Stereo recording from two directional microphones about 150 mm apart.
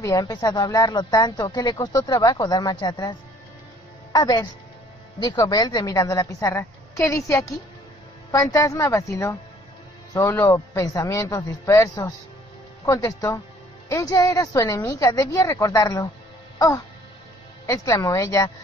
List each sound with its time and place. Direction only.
0.0 s speech: 25° left (ahead or behind)
4.1 s a woman's voice: 25° left (ahead or behind)
16.5 s music: 20° left (ahead or behind)
17.6 s speech: 20° left (ahead or behind)